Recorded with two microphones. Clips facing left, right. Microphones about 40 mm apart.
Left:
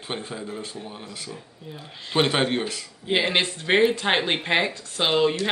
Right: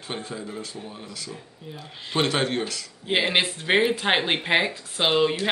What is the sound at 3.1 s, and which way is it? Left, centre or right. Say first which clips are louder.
Speech: even; centre.